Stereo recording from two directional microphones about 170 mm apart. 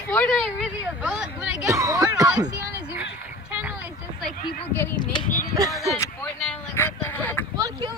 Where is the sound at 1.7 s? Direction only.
20° right (ahead or behind).